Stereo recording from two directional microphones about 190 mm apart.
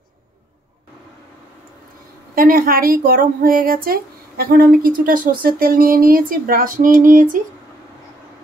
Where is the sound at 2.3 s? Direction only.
50° right (ahead or behind).